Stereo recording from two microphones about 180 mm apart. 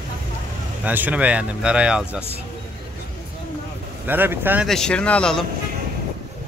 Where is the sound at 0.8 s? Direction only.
10° right (ahead or behind).